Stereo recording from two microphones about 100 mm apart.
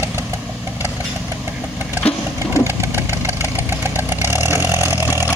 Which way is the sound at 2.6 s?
25° right (ahead or behind).